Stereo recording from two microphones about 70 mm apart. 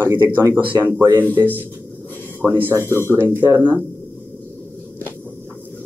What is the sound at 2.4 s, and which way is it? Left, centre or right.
Speech, right.